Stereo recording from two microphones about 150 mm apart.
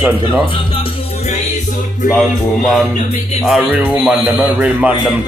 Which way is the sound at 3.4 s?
5° right (ahead or behind).